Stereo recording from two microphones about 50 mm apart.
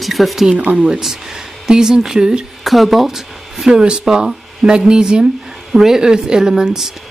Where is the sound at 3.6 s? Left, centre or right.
Centre.